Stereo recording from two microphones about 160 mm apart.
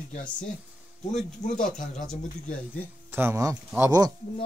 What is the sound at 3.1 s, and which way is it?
Speech, 15° right (ahead or behind).